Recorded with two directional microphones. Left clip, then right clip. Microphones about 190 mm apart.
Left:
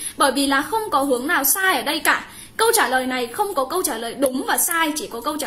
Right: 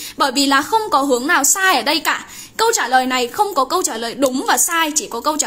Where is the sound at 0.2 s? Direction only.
30° right (ahead or behind).